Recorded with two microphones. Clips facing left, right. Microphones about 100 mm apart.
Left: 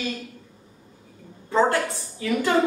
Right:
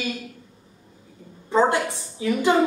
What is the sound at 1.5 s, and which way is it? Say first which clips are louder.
Speech: right 1 dB; 20° right (ahead or behind).